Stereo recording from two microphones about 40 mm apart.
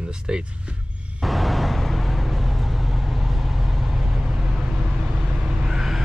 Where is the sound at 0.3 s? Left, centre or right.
Right.